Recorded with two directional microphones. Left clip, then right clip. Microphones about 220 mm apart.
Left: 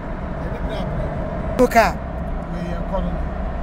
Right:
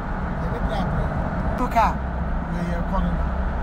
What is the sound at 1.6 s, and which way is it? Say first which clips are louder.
Speech: left 6 dB; 50° left (ahead or behind).